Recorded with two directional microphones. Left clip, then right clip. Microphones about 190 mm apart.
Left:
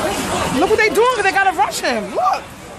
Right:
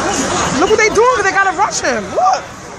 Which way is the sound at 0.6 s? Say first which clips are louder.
Right 3 dB; 10° left (ahead or behind).